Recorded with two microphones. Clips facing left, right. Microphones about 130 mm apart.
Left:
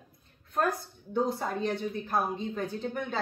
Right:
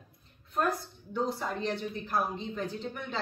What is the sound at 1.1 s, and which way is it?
A woman's voice, 50° left (ahead or behind).